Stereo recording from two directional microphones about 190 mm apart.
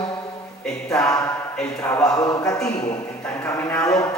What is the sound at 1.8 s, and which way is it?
A man's voice, 10° left (ahead or behind).